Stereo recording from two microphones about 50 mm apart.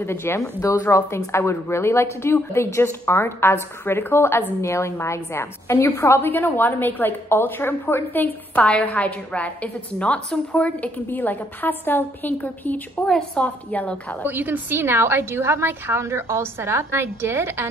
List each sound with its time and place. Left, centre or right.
0.0 s a woman's voice: left
0.4 s a woman's voice: left
8.5 s a woman's voice: left
13.0 s a woman's voice: centre
13.4 s a woman's voice: left
14.2 s a woman's voice: right